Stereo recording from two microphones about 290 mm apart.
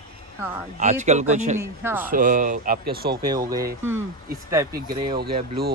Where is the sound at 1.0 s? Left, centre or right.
Right.